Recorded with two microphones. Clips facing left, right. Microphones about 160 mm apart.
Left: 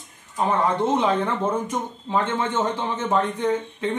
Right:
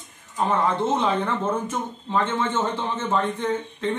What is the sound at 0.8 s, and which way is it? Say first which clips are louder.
Speech: left 2 dB; 10° left (ahead or behind).